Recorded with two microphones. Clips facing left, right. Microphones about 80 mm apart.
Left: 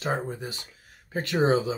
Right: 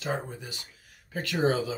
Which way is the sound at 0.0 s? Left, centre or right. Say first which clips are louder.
Left 3 dB; left.